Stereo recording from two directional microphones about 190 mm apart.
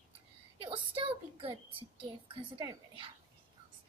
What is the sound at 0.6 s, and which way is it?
A child's voice, 30° right (ahead or behind).